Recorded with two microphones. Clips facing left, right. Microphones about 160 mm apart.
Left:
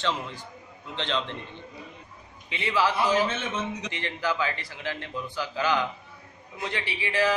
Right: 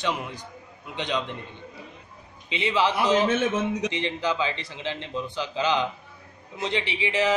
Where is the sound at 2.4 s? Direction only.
20° right (ahead or behind).